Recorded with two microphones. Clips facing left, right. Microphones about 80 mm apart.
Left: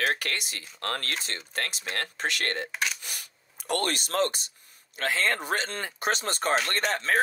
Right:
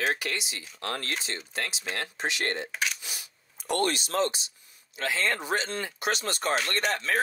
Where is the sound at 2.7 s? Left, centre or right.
Centre.